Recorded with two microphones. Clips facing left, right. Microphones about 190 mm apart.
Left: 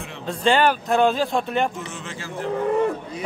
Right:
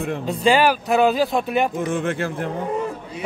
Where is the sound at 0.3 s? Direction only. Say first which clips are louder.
Right 1 dB; 10° right (ahead or behind).